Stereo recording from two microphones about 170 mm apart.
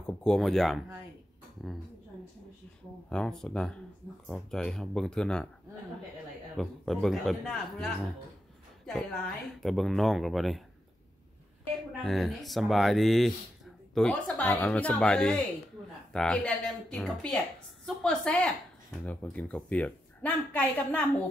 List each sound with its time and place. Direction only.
0.0 s speech: 5° left (ahead or behind)
3.1 s a man's voice: 5° left (ahead or behind)
6.5 s a man's voice: centre (ahead or behind)
9.6 s a man's voice: centre (ahead or behind)
12.0 s a man's voice: centre (ahead or behind)